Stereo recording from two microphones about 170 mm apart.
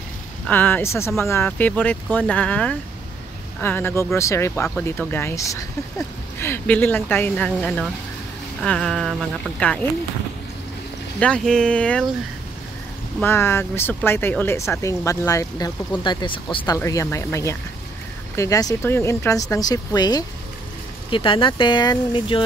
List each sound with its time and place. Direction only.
0.5 s speech: 10° left (ahead or behind)
11.1 s speech: 5° left (ahead or behind)
13.2 s speech: 15° left (ahead or behind)